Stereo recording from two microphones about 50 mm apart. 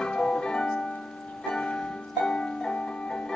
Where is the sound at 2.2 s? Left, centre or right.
Centre.